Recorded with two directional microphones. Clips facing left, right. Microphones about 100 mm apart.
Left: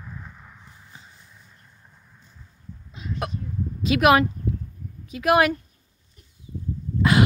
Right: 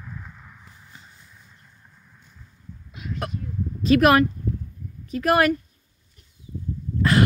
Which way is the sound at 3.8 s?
10° left (ahead or behind).